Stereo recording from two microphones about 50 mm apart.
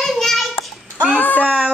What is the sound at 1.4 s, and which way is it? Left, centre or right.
Music, right.